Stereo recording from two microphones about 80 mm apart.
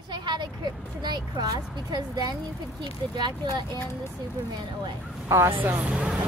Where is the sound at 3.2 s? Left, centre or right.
Right.